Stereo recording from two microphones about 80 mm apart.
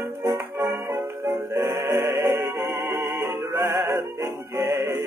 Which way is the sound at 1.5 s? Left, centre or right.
Right.